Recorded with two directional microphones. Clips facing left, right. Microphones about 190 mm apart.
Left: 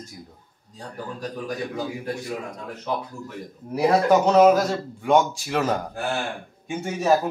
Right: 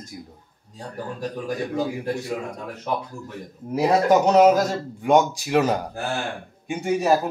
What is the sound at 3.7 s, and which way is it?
Speech, 20° right (ahead or behind).